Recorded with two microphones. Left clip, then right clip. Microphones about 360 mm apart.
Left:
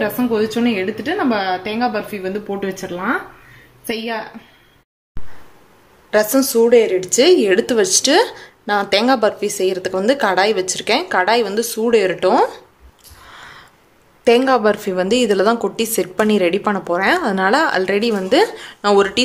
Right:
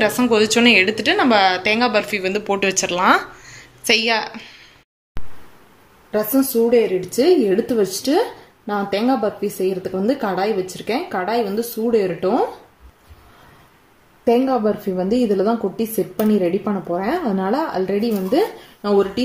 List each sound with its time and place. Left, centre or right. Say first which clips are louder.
0.0 s speech: right 2 dB; centre
6.0 s speech: left 4 dB; left
14.2 s speech: left 4 dB; left